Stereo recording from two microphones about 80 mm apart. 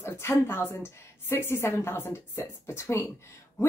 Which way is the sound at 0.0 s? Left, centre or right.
Left.